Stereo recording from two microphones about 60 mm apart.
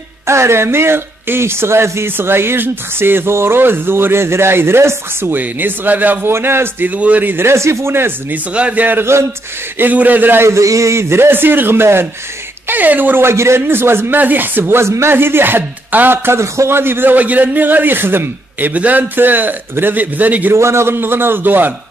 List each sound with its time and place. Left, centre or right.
0.3 s speech: right
6.3 s speech: right
6.9 s a man's voice: right
7.4 s speech: right
8.5 s a man's voice: right
9.0 s speech: right
9.8 s a man's voice: right
10.4 s speech: right
12.6 s speech: right
13.2 s speech: right
16.3 s speech: right
20.5 s speech: right